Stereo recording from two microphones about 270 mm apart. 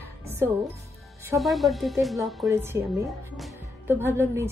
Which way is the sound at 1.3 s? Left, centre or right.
Centre.